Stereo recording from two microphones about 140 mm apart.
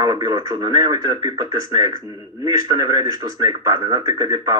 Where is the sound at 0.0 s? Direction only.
30° right (ahead or behind).